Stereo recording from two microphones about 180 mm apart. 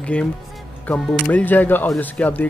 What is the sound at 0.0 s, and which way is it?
Speech, 5° left (ahead or behind).